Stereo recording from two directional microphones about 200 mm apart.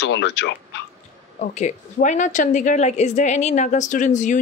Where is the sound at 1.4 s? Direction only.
35° left (ahead or behind).